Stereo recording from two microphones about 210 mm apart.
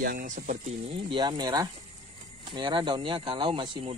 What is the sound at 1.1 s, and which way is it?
Speech, 20° right (ahead or behind).